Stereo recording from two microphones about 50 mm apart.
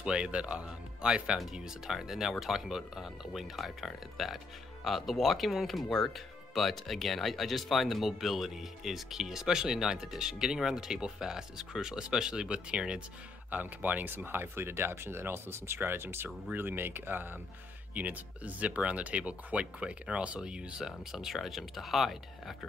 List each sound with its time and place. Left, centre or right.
0.0 s speech: centre
13.5 s speech: right
17.9 s speech: right; by 22.6 s centre